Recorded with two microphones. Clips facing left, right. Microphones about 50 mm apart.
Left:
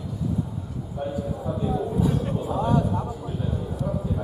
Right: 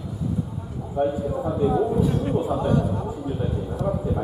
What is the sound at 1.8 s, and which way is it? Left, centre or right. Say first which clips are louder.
Speech: right 3 dB; centre.